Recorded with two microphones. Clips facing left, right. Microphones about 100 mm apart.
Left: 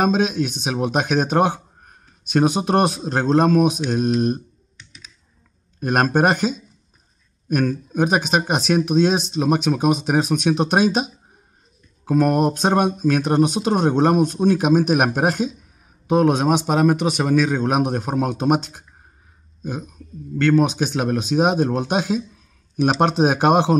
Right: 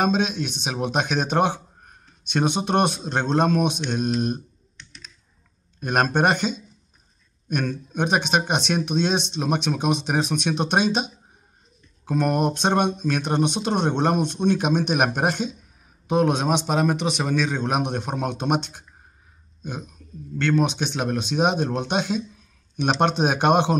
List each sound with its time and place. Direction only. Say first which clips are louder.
0.0 s speech: left 3 dB; centre (ahead or behind)